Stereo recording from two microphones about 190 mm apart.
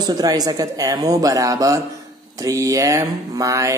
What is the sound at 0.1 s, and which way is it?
Speech, 20° right (ahead or behind).